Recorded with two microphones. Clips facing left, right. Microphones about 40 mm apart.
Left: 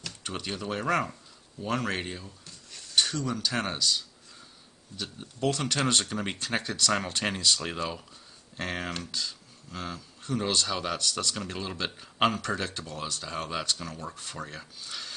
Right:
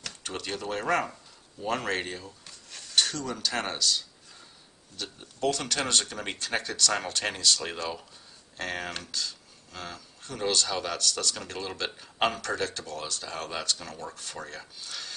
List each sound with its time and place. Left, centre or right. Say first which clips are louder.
0.0 s speech: even; centre
1.6 s speech: even; centre
1.9 s speech: right 2 dB; centre
14.9 s a sound: even; centre